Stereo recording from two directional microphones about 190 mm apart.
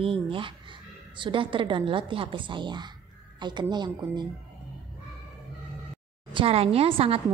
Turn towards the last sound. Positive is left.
turn(degrees=-30)  # may be behind; listen again after turning